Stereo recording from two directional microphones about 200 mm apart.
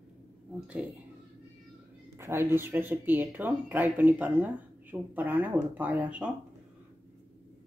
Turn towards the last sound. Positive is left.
turn(degrees=-5)  # may be behind; listen again after turning